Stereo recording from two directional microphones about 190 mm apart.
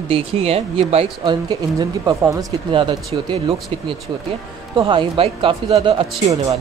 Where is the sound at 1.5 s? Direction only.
20° right (ahead or behind).